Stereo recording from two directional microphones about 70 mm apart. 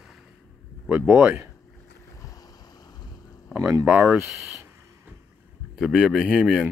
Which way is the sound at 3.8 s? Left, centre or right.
Centre.